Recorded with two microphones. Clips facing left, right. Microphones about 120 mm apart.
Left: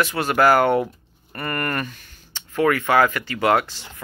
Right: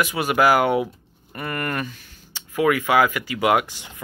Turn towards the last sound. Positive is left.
turn(degrees=-15)  # may be behind; listen again after turning